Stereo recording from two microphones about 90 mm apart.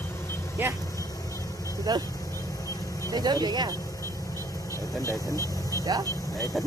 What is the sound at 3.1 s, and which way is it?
Speech, 50° right (ahead or behind).